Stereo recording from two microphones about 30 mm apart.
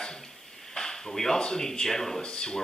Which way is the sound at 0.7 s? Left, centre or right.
Centre.